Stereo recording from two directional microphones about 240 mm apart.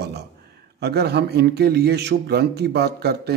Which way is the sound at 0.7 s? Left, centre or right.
Right.